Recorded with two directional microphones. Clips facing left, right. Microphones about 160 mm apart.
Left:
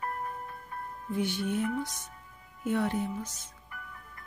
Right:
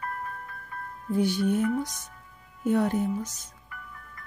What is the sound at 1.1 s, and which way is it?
Speech, 40° right (ahead or behind).